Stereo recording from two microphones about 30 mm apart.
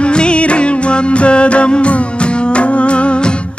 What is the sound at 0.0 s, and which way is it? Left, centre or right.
Music, left.